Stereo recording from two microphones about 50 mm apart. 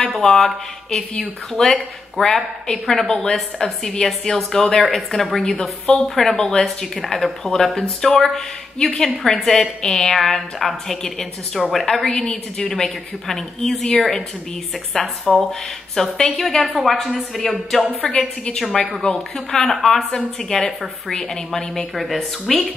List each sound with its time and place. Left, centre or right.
0.2 s a woman's voice: centre
14.9 s a woman's voice: centre
18.1 s a woman's voice: centre
19.1 s a woman's voice: centre